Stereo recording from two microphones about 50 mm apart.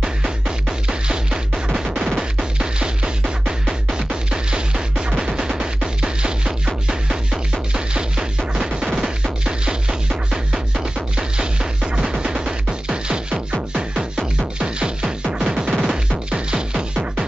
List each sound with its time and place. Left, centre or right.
0.0 s music: centre